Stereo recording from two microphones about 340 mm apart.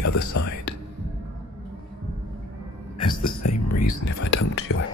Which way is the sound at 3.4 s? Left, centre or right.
Left.